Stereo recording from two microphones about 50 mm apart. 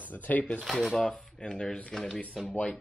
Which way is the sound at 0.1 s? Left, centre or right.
Left.